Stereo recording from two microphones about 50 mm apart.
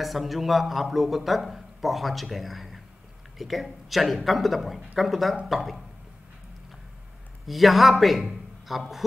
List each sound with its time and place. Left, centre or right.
0.0 s a man's voice: centre
7.4 s a man's voice: centre